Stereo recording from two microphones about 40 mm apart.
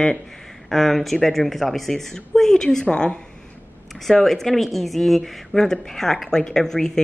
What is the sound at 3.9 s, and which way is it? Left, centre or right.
Speech, centre.